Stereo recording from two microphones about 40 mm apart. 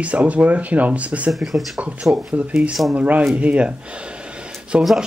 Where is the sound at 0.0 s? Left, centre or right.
Right.